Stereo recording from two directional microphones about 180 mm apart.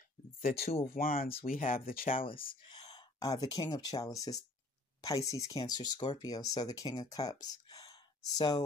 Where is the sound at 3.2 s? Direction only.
20° left (ahead or behind).